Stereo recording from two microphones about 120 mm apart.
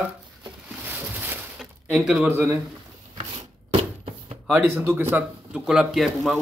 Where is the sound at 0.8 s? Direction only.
15° right (ahead or behind).